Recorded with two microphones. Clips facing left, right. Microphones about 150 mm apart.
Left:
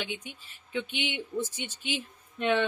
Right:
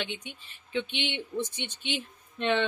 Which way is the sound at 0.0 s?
5° left (ahead or behind).